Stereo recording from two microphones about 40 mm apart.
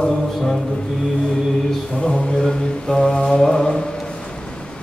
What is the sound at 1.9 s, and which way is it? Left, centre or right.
Mantra, left.